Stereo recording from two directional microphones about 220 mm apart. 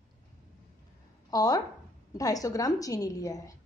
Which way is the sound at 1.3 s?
15° left (ahead or behind).